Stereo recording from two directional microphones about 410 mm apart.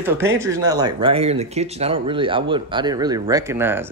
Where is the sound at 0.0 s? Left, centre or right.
Centre.